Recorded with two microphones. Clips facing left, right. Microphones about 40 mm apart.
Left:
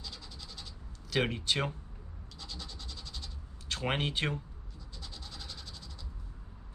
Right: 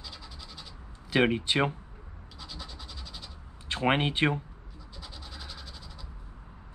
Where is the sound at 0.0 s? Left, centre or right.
Centre.